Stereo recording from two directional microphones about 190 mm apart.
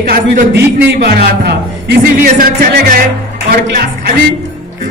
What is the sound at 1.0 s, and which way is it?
A man's voice, 55° right (ahead or behind).